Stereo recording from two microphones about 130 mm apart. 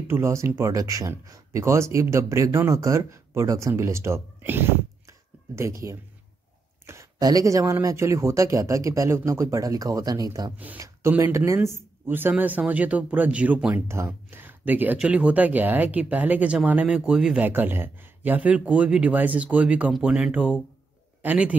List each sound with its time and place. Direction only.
0.1 s a man's voice: 20° right (ahead or behind)